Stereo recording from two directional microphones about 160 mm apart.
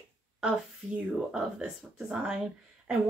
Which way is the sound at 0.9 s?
5° right (ahead or behind).